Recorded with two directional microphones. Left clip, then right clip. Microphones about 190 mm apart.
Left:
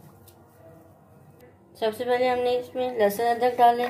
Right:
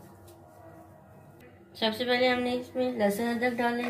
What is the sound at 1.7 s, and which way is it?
A woman's voice, 25° left (ahead or behind).